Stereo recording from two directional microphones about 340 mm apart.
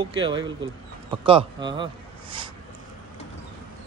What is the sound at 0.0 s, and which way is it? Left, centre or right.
A man's voice, centre.